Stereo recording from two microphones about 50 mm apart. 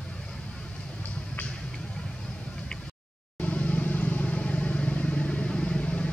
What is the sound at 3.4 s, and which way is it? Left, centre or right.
Vehicle, left.